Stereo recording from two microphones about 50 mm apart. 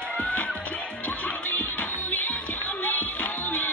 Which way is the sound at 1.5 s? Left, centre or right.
Left.